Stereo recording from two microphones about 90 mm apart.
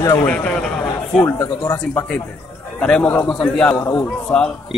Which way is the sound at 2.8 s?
15° left (ahead or behind).